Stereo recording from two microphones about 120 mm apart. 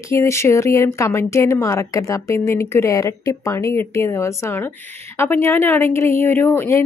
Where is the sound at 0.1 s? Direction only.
25° left (ahead or behind).